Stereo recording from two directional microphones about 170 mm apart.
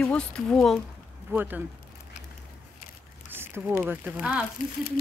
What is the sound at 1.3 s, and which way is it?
Speech, 10° right (ahead or behind).